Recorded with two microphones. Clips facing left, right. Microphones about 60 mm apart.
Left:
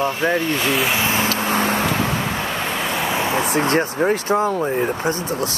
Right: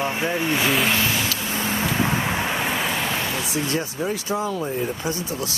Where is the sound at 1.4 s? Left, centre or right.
Left.